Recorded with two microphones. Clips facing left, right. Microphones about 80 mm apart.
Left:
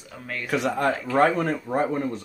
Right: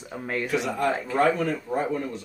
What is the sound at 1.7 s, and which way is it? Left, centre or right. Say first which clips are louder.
Speech: left 2 dB; left.